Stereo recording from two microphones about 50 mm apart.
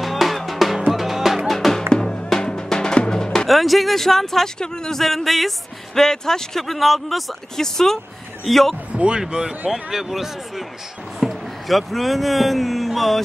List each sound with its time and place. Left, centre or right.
0.0 s music: centre
3.4 s speech: centre
8.9 s speech: centre
9.7 s speech: centre